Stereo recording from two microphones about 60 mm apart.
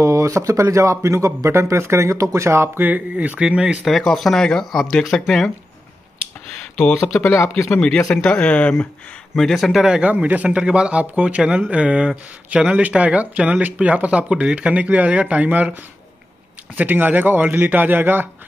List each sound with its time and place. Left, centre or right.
0.0 s speech: right
2.8 s speech: right
3.8 s speech: centre
7.2 s speech: left
8.1 s speech: centre
9.3 s speech: centre
9.7 s speech: centre
10.1 s speech: right
16.7 s speech: right